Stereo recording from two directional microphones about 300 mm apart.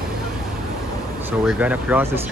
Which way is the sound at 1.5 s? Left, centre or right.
Centre.